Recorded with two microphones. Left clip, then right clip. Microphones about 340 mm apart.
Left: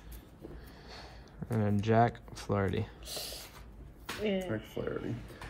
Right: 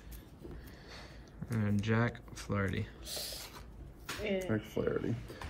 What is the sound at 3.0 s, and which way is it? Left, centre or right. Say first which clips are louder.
Speech: left 1 dB; left.